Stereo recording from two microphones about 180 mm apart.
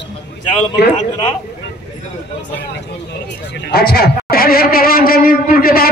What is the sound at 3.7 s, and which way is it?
A man's voice, 60° left (ahead or behind).